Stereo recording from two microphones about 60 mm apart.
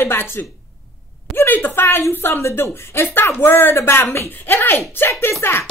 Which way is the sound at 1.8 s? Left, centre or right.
Left.